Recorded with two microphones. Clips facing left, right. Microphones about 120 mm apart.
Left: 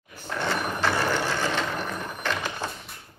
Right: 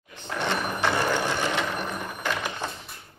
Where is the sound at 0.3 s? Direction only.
20° right (ahead or behind).